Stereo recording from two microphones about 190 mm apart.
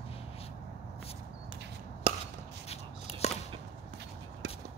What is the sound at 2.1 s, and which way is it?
Chopping, 25° right (ahead or behind).